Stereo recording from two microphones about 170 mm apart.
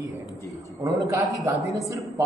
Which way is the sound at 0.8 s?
20° right (ahead or behind).